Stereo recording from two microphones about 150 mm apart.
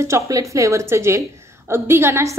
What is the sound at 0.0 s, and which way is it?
A woman's voice, 20° right (ahead or behind).